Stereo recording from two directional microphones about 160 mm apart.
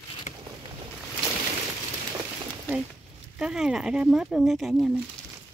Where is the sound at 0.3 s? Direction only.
45° left (ahead or behind).